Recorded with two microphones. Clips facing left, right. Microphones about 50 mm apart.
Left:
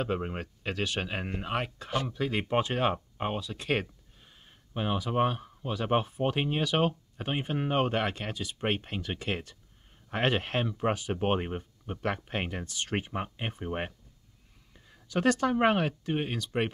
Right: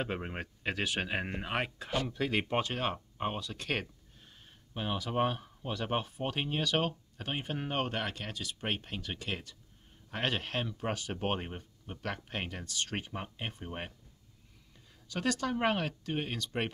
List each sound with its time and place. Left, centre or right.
0.0 s speech: centre
1.9 s speech: centre
2.5 s speech: centre
5.9 s speech: centre